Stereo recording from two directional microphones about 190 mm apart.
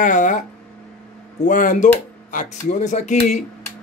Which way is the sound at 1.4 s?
45° left (ahead or behind).